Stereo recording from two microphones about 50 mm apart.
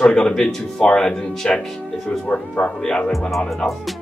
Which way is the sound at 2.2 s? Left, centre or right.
Left.